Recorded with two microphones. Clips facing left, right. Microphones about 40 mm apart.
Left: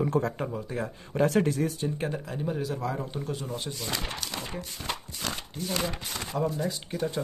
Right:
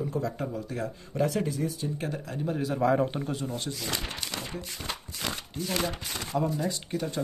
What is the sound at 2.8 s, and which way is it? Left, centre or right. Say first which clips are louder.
Speech: right 8 dB; right.